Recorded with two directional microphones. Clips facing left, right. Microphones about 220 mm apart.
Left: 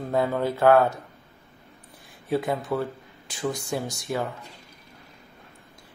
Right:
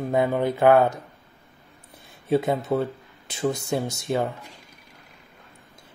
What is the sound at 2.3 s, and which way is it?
Speech, 25° right (ahead or behind).